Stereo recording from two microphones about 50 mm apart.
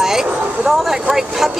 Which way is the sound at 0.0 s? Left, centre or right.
Centre.